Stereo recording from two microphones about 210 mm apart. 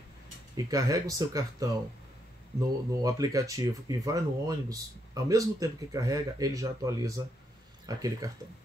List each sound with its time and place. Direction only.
0.6 s speech: 15° right (ahead or behind)
3.0 s speech: 15° right (ahead or behind)